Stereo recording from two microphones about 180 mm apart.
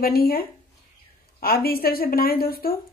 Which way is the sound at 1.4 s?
55° left (ahead or behind).